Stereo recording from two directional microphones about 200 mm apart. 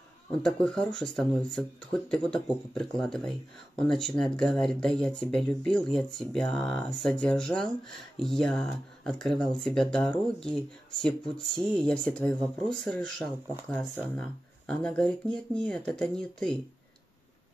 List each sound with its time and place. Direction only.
0.3 s speech: 5° left (ahead or behind)